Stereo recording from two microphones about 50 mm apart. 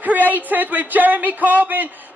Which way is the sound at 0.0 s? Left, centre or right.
Right.